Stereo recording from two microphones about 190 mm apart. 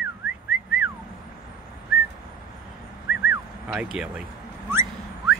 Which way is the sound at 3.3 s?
5° right (ahead or behind).